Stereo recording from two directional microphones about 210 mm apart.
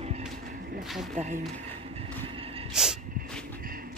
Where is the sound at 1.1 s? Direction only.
35° right (ahead or behind).